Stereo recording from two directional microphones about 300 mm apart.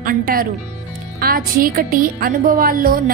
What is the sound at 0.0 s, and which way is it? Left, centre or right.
A woman's voice, right.